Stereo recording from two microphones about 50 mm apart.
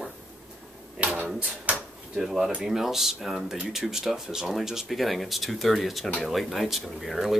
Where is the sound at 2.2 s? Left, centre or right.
Centre.